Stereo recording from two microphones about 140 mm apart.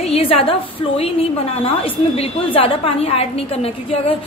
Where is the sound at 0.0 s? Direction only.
45° left (ahead or behind).